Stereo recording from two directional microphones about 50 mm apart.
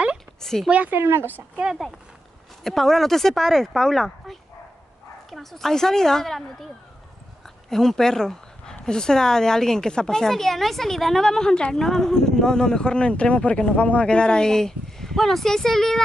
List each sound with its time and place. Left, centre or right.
0.4 s a sound: centre
0.7 s speech: right
0.9 s speech: right
2.6 s speech: centre
7.7 s speech: centre